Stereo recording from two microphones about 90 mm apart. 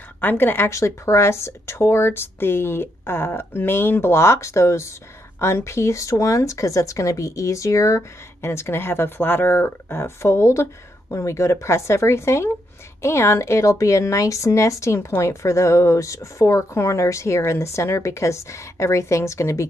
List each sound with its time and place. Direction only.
0.2 s speech: 25° left (ahead or behind)